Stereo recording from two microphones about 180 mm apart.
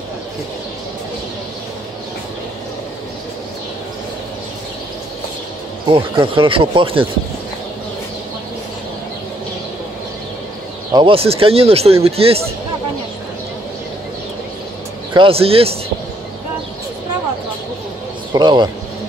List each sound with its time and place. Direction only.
5.9 s speech: 25° right (ahead or behind)
10.9 s speech: 25° right (ahead or behind)
15.1 s speech: 30° right (ahead or behind)
18.3 s speech: 25° right (ahead or behind)